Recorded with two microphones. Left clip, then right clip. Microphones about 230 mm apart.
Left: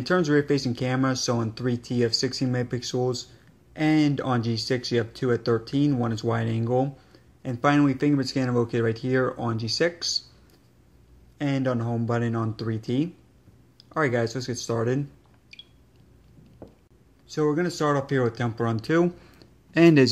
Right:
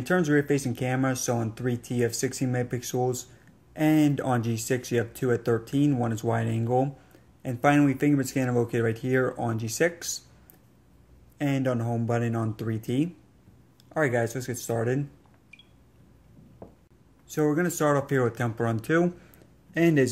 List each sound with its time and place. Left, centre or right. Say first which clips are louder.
0.0 s speech: left 2 dB; centre
11.3 s speech: left 1 dB; centre
17.3 s speech: left 1 dB; centre